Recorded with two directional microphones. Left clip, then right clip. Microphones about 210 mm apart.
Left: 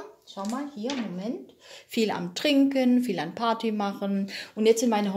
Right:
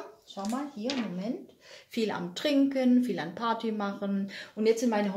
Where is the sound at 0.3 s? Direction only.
35° left (ahead or behind).